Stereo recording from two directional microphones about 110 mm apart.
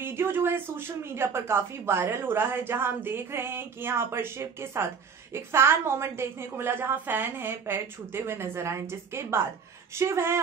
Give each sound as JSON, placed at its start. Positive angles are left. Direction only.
{"t": 0.0, "sound": "speech", "side_deg": -20}